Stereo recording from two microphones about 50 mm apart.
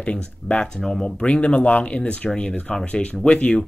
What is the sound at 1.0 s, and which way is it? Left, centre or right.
Speech, left.